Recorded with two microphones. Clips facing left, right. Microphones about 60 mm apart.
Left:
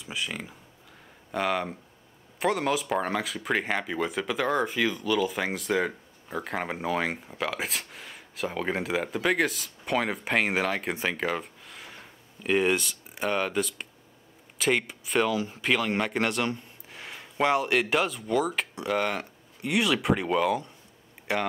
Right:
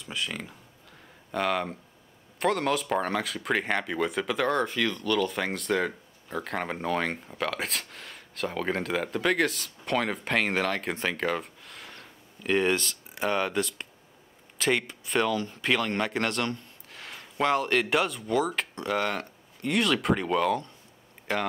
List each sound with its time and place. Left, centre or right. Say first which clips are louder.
0.0 s speech: even; centre
15.6 s speech: left 1 dB; centre